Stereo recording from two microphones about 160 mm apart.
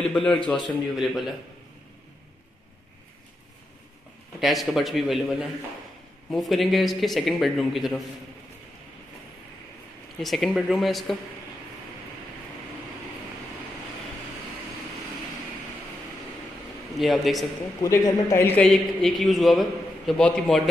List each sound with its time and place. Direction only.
0.0 s a man's voice: 5° left (ahead or behind)
4.4 s a man's voice: centre (ahead or behind)
10.2 s a man's voice: centre (ahead or behind)
17.0 s a man's voice: centre (ahead or behind)
17.8 s speech: 20° left (ahead or behind)
18.7 s a man's voice: centre (ahead or behind)